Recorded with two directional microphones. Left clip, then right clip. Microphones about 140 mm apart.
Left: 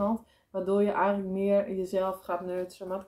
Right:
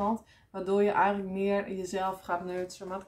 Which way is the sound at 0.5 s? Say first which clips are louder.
Even; 25° right (ahead or behind).